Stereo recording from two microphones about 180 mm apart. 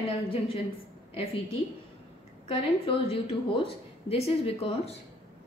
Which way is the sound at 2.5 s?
30° left (ahead or behind).